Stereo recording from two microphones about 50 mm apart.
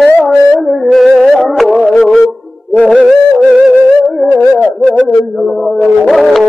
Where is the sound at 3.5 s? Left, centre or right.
Centre.